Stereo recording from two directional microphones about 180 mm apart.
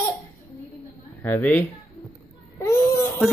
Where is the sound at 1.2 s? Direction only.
10° left (ahead or behind).